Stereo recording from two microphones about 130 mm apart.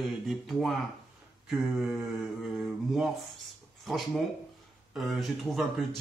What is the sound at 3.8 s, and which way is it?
Speech, centre (ahead or behind).